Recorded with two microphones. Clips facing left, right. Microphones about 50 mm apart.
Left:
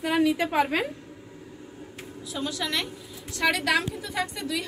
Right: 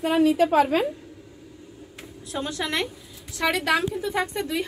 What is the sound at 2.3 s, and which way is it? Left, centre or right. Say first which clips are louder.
Speech: right 3 dB; right.